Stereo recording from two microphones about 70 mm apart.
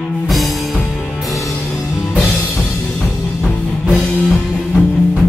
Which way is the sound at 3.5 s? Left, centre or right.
Left.